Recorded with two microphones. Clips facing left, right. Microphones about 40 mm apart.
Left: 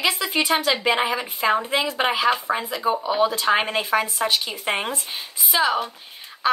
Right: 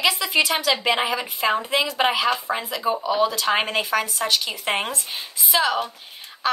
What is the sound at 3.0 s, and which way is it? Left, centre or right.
Speech, left.